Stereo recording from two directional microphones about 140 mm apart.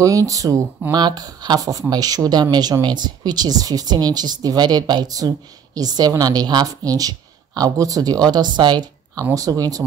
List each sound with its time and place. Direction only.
0.0 s speech: 25° right (ahead or behind)